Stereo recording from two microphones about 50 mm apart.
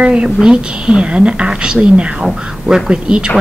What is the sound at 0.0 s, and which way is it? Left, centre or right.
A woman's voice, centre.